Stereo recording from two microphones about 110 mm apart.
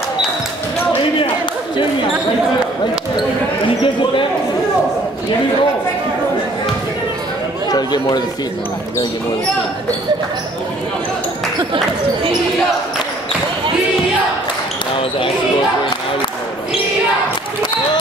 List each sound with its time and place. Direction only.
3.8 s basketball bounce: 50° left (ahead or behind)
7.7 s chatter: 40° left (ahead or behind)